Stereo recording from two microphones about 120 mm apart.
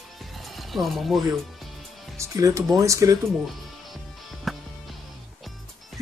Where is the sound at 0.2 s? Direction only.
Centre (ahead or behind).